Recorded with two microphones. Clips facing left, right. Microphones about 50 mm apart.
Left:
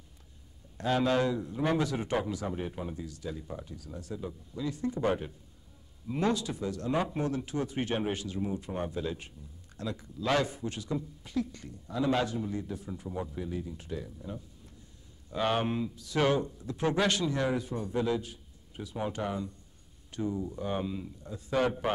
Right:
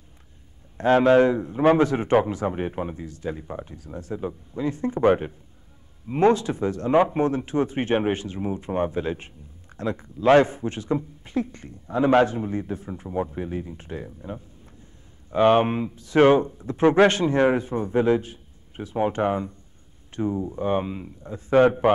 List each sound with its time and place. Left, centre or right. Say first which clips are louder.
0.7 s speech: right 11 dB; right